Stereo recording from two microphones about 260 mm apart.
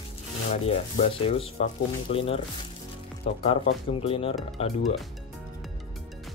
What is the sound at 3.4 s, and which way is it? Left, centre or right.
Speech, left.